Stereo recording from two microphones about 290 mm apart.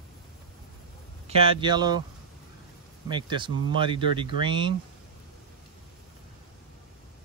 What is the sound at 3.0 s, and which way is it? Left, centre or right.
Speech, centre.